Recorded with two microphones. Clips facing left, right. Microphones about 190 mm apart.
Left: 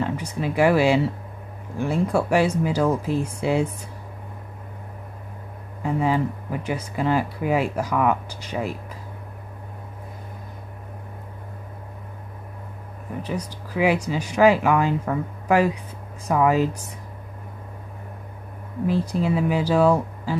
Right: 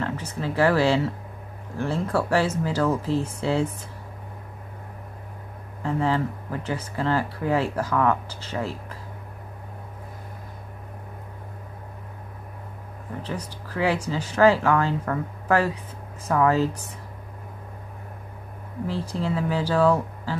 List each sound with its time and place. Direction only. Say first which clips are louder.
0.0 s speech: left 3 dB; 15° left (ahead or behind)
5.8 s speech: left 2 dB; 10° left (ahead or behind)
13.7 s speech: left 3 dB; 10° left (ahead or behind)
18.9 s speech: left 5 dB; 10° left (ahead or behind)